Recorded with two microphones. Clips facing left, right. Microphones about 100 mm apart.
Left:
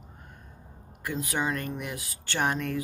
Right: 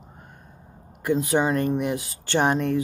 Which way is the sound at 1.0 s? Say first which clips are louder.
Right 9 dB; 25° right (ahead or behind).